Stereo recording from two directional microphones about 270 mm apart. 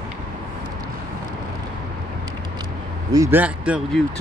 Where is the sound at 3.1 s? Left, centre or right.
Centre.